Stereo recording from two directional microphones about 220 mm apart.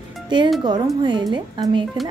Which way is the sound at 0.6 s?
20° right (ahead or behind).